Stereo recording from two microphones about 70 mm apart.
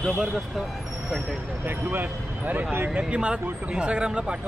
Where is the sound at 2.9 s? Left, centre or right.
Centre.